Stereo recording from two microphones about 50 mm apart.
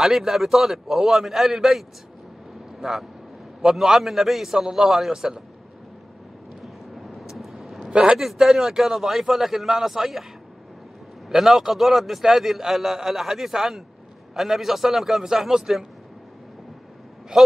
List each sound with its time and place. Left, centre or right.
0.0 s a man's voice: centre
6.6 s vehicle: centre
7.9 s a man's voice: centre
8.2 s a man's voice: centre
11.2 s a man's voice: centre
17.3 s a man's voice: centre